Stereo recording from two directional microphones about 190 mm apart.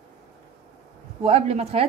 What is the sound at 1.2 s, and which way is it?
Speech, 35° right (ahead or behind).